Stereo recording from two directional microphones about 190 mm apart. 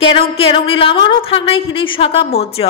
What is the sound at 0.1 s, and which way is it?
A woman's voice, 30° left (ahead or behind).